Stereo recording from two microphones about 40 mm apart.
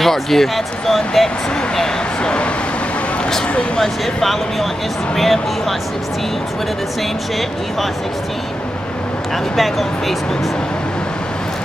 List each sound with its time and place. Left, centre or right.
0.0 s speech: centre
1.8 s a sound: left
3.7 s speech: centre
9.6 s speech: centre